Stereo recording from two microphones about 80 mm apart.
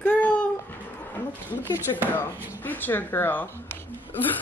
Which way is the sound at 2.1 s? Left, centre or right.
Left.